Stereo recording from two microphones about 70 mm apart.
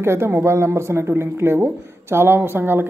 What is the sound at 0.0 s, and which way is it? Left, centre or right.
A man's voice, right.